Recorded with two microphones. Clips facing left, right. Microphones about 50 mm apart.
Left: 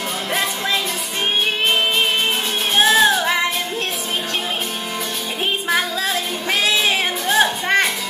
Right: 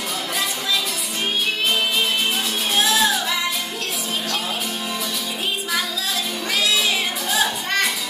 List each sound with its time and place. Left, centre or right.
2.7 s music: left
5.7 s music: left